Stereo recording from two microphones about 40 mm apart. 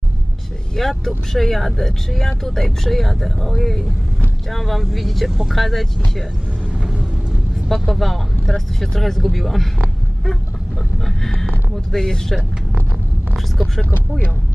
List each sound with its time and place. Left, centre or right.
0.8 s speech: centre
6.7 s vehicle: centre
7.6 s speech: centre
11.9 s speech: centre